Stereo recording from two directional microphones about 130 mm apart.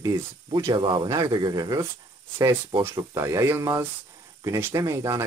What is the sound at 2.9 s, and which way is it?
Speech, 20° right (ahead or behind).